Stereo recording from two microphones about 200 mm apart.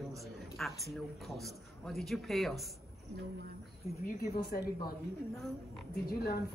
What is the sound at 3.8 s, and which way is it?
Speech, 30° left (ahead or behind).